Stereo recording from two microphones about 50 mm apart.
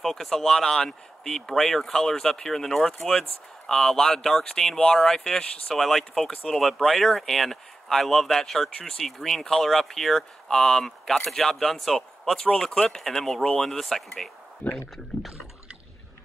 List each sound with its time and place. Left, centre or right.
0.0 s speech: centre
14.6 s speech: left